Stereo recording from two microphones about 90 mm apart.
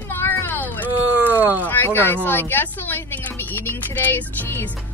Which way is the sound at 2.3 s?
20° left (ahead or behind).